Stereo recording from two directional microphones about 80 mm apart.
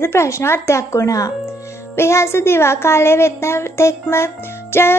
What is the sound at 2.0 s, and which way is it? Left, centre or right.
Speech, left.